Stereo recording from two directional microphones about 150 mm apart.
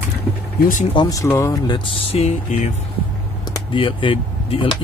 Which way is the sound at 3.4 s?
30° left (ahead or behind).